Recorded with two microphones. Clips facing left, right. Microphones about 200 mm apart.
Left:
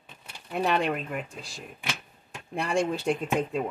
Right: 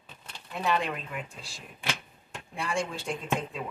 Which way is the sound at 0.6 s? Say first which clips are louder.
Left 2 dB; 50° left (ahead or behind).